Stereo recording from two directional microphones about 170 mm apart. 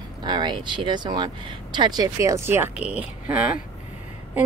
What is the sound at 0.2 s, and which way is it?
Speech, 25° right (ahead or behind).